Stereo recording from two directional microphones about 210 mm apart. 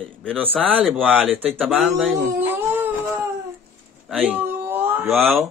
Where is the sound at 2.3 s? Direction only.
10° right (ahead or behind).